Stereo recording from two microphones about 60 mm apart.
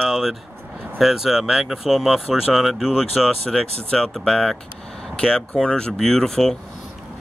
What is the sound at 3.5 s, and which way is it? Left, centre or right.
Speech, centre.